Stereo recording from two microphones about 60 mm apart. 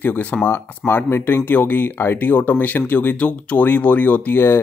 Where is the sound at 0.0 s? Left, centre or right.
Left.